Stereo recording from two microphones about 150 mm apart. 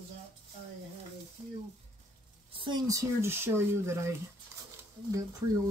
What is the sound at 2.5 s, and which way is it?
Speech, 30° right (ahead or behind).